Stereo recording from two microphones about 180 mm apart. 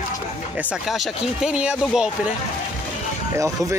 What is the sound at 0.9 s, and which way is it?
Speech, centre (ahead or behind).